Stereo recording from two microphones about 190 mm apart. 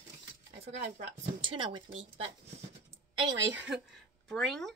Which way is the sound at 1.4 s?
25° right (ahead or behind).